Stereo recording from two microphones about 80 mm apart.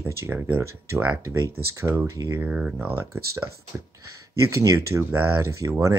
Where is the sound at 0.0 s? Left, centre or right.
Right.